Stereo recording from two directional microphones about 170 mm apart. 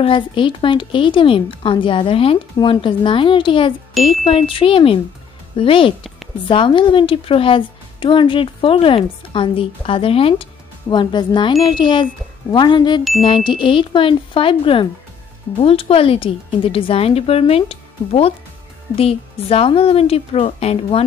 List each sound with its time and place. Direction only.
0.0 s a woman's voice: 30° left (ahead or behind)